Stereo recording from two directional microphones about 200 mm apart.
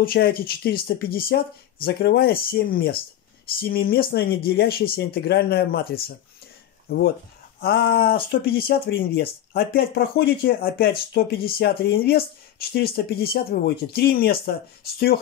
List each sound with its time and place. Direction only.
0.0 s speech: 45° left (ahead or behind)
7.6 s speech: 50° left (ahead or behind)